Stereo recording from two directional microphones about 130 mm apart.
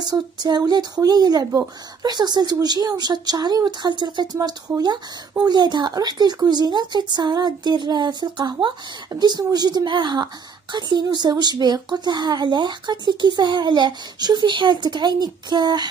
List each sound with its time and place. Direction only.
0.0 s speech: 35° right (ahead or behind)